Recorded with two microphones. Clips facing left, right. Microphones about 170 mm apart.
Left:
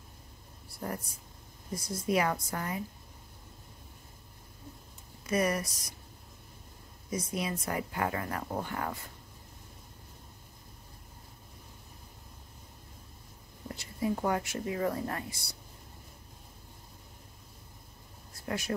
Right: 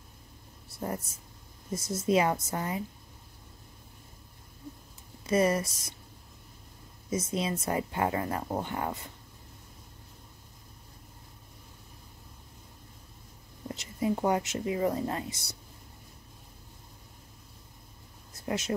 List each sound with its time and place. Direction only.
0.7 s speech: 25° right (ahead or behind)
5.2 s speech: 25° right (ahead or behind)
7.1 s speech: 25° right (ahead or behind)
13.7 s speech: 20° right (ahead or behind)
18.3 s speech: 20° right (ahead or behind)